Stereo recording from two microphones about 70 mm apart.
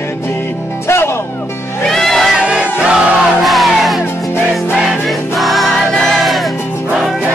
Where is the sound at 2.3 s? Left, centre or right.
Centre.